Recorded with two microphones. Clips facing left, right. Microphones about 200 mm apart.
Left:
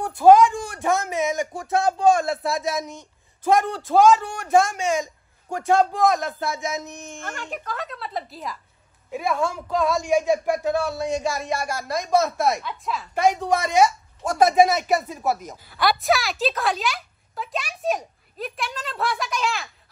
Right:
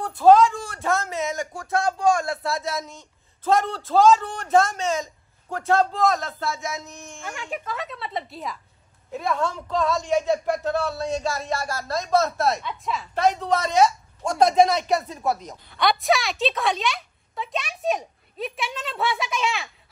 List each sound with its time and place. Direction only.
0.0 s speech: 15° left (ahead or behind)
7.2 s a woman's voice: centre (ahead or behind)
12.6 s a woman's voice: centre (ahead or behind)
13.1 s a woman's voice: 10° left (ahead or behind)